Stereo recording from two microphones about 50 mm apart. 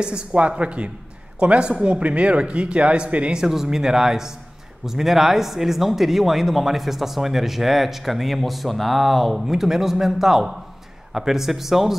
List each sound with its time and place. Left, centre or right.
0.0 s speech: centre
3.3 s speech: centre